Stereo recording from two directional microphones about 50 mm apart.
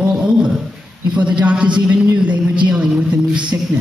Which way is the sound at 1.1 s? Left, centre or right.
Right.